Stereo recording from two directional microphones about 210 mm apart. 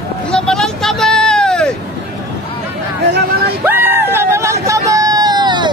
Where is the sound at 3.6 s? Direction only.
10° right (ahead or behind).